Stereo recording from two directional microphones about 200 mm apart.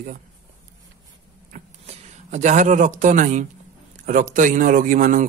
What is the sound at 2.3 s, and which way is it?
A man's voice, 40° right (ahead or behind).